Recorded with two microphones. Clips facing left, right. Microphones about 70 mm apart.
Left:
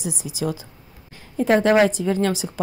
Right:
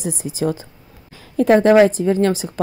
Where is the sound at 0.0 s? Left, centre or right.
Right.